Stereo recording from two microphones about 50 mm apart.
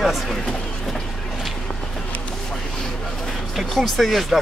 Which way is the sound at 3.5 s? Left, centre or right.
Centre.